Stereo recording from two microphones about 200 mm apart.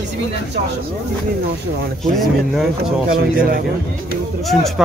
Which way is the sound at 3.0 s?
50° right (ahead or behind).